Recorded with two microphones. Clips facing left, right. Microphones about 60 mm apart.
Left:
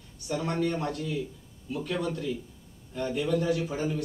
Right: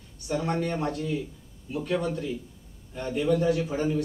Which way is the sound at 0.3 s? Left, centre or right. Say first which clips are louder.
Right 1 dB; right.